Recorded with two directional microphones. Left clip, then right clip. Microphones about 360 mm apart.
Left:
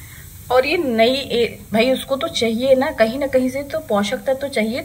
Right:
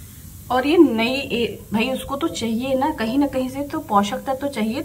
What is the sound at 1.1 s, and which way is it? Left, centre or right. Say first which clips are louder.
Speech: left 4 dB; left.